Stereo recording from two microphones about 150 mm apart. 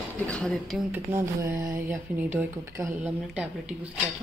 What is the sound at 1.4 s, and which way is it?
Mantra, 20° right (ahead or behind).